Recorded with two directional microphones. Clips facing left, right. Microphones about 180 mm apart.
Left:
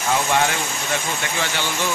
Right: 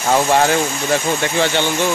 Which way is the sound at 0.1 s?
35° right (ahead or behind).